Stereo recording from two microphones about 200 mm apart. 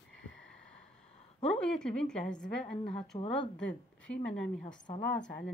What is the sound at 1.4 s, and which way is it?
Speech, 5° left (ahead or behind).